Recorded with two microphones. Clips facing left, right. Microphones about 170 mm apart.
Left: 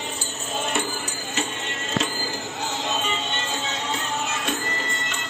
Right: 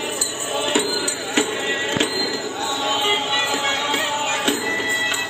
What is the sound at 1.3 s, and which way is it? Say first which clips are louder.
Music: right 9 dB; 90° right.